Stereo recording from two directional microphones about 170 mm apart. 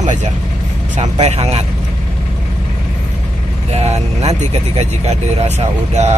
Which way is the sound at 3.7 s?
40° right (ahead or behind).